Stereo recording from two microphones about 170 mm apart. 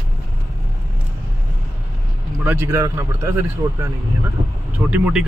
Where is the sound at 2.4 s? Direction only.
15° right (ahead or behind).